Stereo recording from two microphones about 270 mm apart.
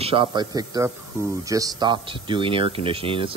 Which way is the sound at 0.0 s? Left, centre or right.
Centre.